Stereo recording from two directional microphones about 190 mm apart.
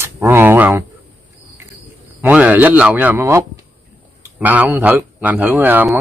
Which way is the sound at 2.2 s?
10° right (ahead or behind).